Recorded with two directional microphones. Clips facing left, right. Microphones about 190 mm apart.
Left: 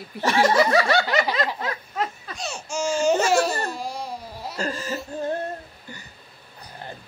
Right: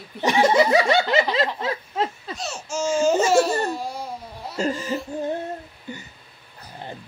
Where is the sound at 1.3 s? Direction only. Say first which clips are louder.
Right 3 dB; 25° right (ahead or behind).